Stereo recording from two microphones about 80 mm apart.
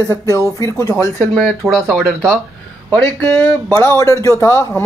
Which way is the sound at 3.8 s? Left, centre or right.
Left.